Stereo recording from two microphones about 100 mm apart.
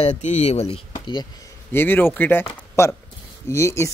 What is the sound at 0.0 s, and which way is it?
Speech, 90° left.